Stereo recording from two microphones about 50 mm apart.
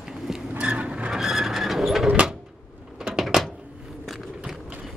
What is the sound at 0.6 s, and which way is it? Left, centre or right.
Vehicle, right.